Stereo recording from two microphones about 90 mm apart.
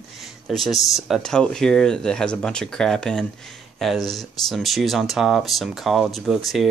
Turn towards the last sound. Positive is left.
turn(degrees=0)  # may be behind; listen again after turning